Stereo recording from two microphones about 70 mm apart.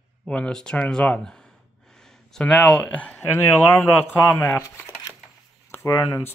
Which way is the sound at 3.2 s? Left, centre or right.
Left.